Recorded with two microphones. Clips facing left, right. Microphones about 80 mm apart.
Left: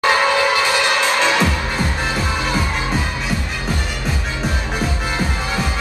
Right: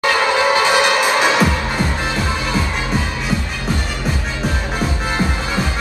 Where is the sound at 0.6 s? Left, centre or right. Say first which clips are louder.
Right 3 dB; right.